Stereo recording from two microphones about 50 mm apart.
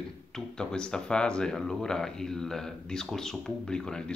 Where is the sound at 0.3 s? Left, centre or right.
Centre.